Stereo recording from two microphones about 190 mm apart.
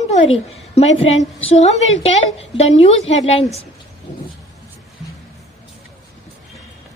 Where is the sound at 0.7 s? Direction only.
35° left (ahead or behind).